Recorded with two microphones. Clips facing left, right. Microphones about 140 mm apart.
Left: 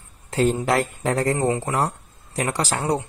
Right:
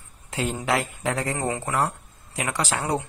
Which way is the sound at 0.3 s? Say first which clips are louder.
Left 5 dB; 40° left (ahead or behind).